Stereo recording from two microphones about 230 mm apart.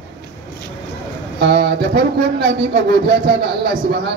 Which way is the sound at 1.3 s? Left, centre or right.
Right.